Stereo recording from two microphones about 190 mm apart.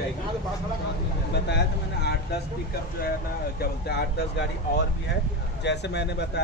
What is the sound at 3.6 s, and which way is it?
Speech, 55° left (ahead or behind).